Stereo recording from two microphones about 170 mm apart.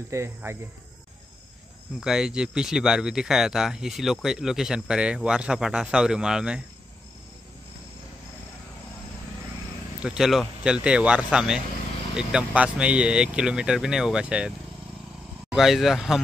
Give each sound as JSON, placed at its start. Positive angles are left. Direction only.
{"t": 0.1, "sound": "cricket", "side_deg": -15}
{"t": 2.0, "sound": "speech", "side_deg": -5}
{"t": 10.0, "sound": "speech", "side_deg": 0}
{"t": 15.5, "sound": "speech", "side_deg": 0}